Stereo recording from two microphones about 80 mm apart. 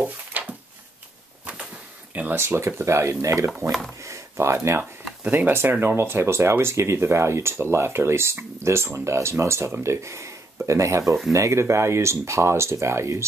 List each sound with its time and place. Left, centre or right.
0.0 s a sound: right
2.1 s speech: right
4.0 s a sound: right
5.2 s speech: right
11.1 s speech: centre
11.3 s speech: right